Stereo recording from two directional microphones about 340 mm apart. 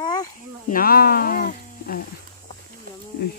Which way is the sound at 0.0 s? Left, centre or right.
Centre.